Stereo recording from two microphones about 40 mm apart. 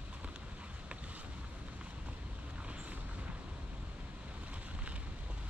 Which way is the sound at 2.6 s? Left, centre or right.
Right.